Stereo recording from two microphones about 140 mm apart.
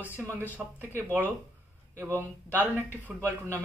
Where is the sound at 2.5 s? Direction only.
15° right (ahead or behind).